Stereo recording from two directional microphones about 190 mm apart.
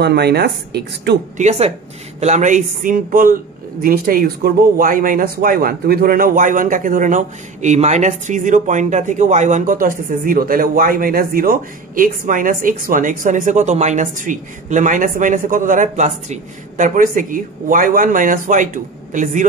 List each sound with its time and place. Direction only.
0.0 s speech: 60° right (ahead or behind)
1.4 s speech: 35° right (ahead or behind)